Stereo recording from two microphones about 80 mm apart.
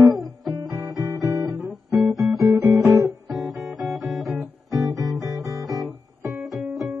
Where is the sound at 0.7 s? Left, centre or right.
Right.